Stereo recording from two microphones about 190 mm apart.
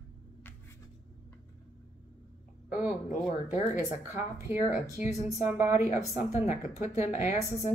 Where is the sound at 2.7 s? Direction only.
5° right (ahead or behind).